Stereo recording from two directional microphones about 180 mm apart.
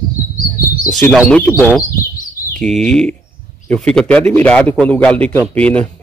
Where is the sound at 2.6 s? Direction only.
5° left (ahead or behind).